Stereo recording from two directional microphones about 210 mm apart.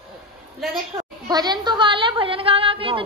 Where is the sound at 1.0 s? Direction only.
20° right (ahead or behind).